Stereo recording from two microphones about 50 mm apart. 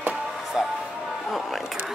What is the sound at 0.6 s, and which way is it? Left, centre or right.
Music, centre.